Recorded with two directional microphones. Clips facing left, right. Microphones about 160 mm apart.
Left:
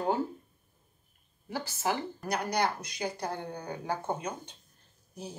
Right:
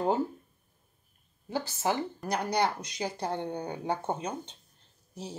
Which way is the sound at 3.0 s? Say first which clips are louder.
Right 3 dB; 25° right (ahead or behind).